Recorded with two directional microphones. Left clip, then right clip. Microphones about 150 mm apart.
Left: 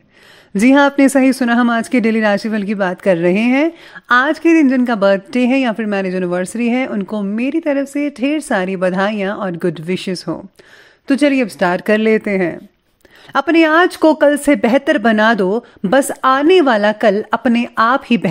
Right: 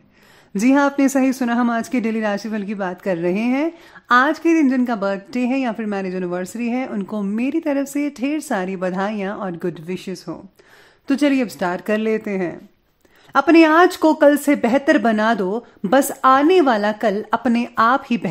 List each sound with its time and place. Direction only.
0.6 s speech: 30° left (ahead or behind)
7.0 s speech: 20° left (ahead or behind); by 10.4 s 35° left (ahead or behind)
11.1 s speech: 20° left (ahead or behind)